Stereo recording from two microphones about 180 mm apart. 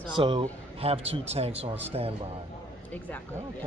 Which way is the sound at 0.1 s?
25° right (ahead or behind).